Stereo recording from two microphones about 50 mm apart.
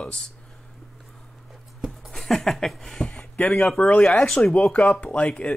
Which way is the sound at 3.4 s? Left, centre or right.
Left.